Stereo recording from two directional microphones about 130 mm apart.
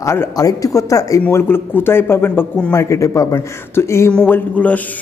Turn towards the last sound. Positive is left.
turn(degrees=10)  # may be behind; listen again after turning